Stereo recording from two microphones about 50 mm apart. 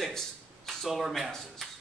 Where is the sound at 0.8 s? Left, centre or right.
Centre.